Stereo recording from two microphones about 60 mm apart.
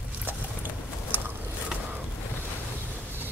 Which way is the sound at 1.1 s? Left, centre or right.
Right.